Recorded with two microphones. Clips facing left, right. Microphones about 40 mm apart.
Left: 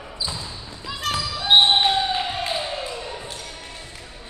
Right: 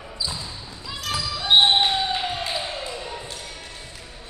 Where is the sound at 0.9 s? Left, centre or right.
Left.